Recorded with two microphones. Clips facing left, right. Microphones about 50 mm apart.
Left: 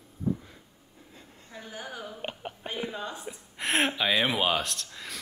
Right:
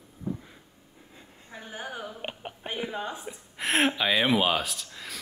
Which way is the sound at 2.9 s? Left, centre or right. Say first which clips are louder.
Right 3 dB; right.